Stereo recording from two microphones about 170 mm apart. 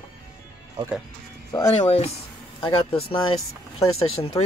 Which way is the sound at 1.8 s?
35° left (ahead or behind).